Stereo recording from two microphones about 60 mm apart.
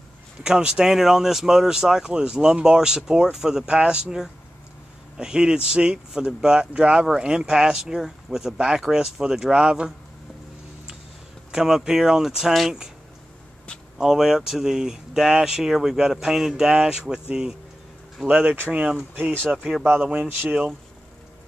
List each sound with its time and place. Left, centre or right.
0.4 s speech: centre
11.5 s speech: centre
13.9 s speech: centre
19.1 s speech: right
19.5 s speech: centre
19.8 s speech: right